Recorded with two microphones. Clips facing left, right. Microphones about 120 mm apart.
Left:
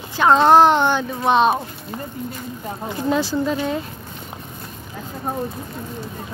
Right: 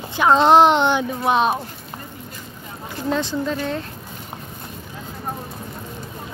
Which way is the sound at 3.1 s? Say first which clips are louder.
Left 2 dB; 5° left (ahead or behind).